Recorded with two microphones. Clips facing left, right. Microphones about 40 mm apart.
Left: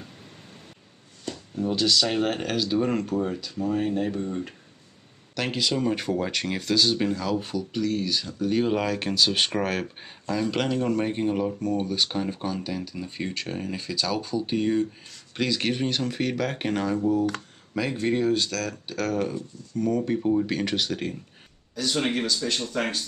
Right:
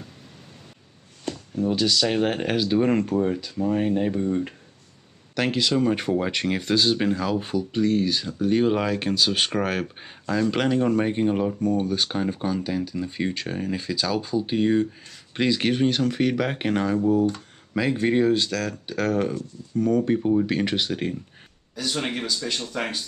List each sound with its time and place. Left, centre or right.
1.6 s speech: centre
5.9 s speech: centre
13.6 s speech: centre
19.8 s speech: centre